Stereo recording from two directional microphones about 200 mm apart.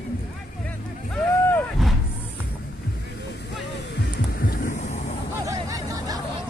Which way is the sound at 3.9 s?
45° left (ahead or behind).